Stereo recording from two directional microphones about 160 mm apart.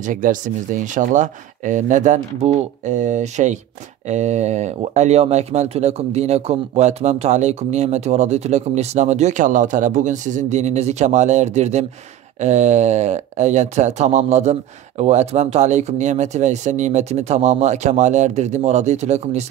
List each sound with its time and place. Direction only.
0.0 s speech: 55° right (ahead or behind)